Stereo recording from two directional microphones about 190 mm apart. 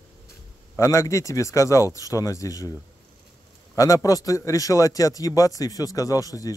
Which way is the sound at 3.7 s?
20° left (ahead or behind).